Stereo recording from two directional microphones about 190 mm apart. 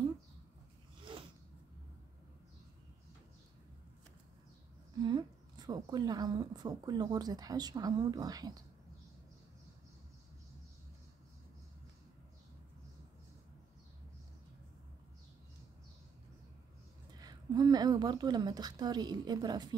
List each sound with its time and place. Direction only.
5.0 s a woman's voice: 20° right (ahead or behind)
17.1 s a woman's voice: 20° right (ahead or behind)